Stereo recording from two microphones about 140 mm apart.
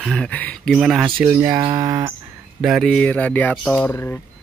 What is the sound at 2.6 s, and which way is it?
Speech, 5° right (ahead or behind).